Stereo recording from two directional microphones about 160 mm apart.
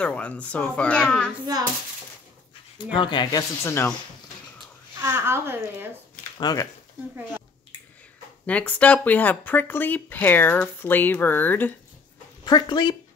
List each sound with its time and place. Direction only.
0.0 s speech: 10° left (ahead or behind)
3.0 s speech: 30° left (ahead or behind)
5.0 s a woman's voice: 15° right (ahead or behind)
6.4 s speech: 25° left (ahead or behind)
8.5 s speech: 10° left (ahead or behind)
12.4 s speech: 25° left (ahead or behind)